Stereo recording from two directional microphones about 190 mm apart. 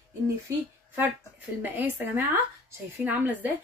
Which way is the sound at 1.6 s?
10° right (ahead or behind).